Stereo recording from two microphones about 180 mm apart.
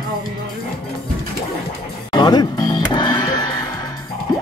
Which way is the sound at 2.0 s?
25° left (ahead or behind).